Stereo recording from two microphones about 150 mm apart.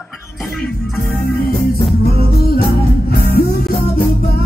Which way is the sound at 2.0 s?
90° left.